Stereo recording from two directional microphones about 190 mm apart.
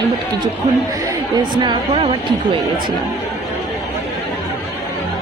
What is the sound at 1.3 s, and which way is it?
Speech, 25° right (ahead or behind).